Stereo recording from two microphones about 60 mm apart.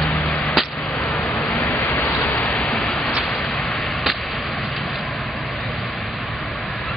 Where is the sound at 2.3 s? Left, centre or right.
Left.